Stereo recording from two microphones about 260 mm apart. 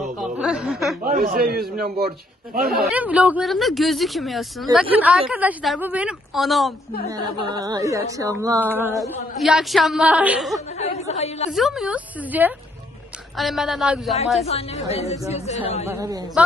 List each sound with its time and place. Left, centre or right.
0.0 s speech: centre
1.0 s speech: right
2.9 s a woman's voice: centre
7.3 s a woman's voice: centre
10.8 s a woman's voice: left
11.5 s a woman's voice: centre
14.4 s a woman's voice: left
15.9 s speech: centre